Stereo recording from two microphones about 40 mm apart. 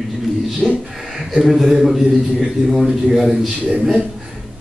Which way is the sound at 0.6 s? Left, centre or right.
Left.